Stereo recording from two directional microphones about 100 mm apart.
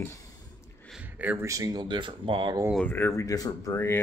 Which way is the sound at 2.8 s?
20° left (ahead or behind).